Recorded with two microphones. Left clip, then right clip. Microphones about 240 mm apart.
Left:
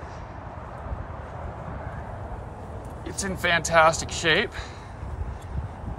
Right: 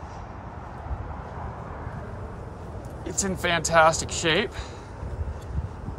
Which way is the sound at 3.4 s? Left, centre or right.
Right.